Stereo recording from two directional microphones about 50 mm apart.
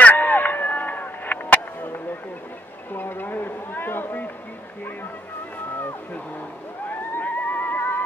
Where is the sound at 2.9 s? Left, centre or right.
Left.